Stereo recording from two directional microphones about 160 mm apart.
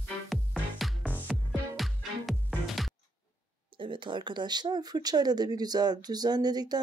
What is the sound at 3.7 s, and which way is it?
Speech, 30° right (ahead or behind).